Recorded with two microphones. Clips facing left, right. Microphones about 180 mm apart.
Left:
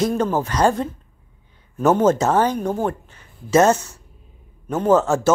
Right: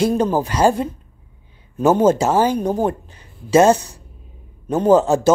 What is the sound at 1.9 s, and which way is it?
Speech, 10° right (ahead or behind).